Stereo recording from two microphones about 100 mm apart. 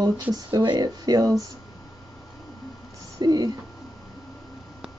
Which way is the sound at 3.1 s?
45° right (ahead or behind).